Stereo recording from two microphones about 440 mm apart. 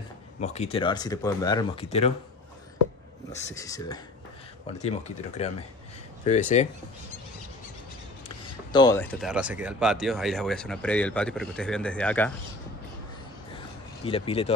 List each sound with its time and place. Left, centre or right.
0.4 s speech: centre
3.3 s speech: centre
8.7 s speech: centre
14.0 s speech: centre